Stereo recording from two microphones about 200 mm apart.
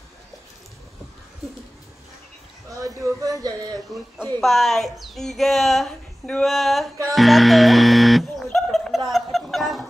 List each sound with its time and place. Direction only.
2.7 s speech: 15° right (ahead or behind)
4.4 s speech: centre (ahead or behind)
7.2 s music: centre (ahead or behind)